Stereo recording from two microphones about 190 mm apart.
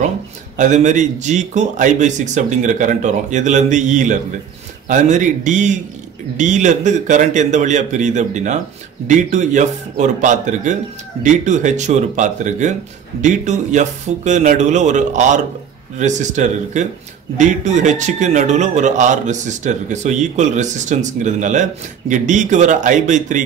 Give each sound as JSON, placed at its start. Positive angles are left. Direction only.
{"t": 0.6, "sound": "speech", "side_deg": -40}